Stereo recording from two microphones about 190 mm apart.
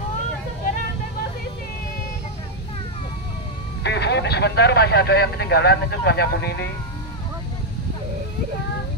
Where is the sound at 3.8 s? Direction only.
65° left (ahead or behind).